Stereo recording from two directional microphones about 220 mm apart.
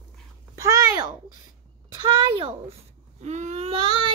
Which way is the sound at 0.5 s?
15° right (ahead or behind).